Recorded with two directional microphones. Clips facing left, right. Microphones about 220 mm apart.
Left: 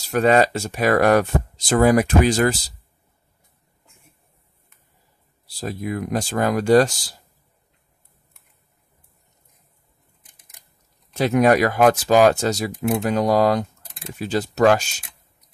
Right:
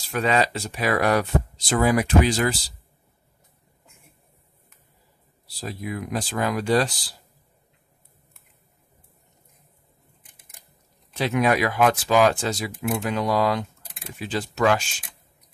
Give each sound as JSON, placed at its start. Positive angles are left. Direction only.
{"t": 0.1, "sound": "speech", "side_deg": 45}
{"t": 5.6, "sound": "speech", "side_deg": 45}
{"t": 11.1, "sound": "speech", "side_deg": 45}